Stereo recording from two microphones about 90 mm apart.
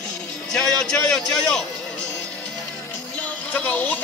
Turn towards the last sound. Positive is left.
turn(degrees=20)  # may be behind; listen again after turning